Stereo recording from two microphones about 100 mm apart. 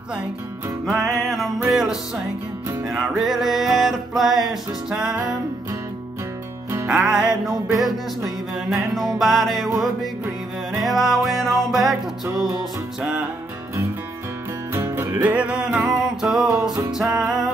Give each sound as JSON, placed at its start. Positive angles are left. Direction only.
{"t": 0.8, "sound": "music", "side_deg": 0}
{"t": 6.9, "sound": "music", "side_deg": -5}
{"t": 8.6, "sound": "music", "side_deg": 0}
{"t": 10.8, "sound": "music", "side_deg": 0}
{"t": 14.7, "sound": "music", "side_deg": -25}
{"t": 15.3, "sound": "music", "side_deg": -10}